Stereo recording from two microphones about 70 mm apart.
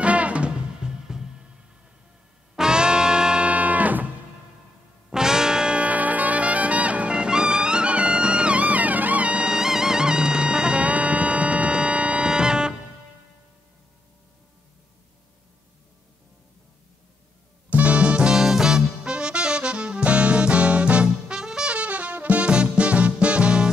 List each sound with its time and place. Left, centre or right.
0.0 s music: centre
2.5 s music: centre
5.1 s brass instrument: centre
17.6 s music: centre